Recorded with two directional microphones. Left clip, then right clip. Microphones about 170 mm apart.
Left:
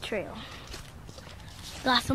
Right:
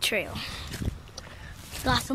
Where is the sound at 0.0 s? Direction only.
15° right (ahead or behind).